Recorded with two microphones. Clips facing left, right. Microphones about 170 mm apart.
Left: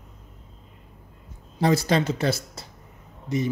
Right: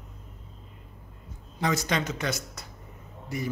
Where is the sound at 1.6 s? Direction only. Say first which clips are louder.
Left 6 dB; 30° left (ahead or behind).